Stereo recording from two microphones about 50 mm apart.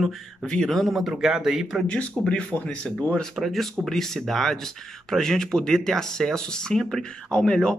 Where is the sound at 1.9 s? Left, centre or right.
Centre.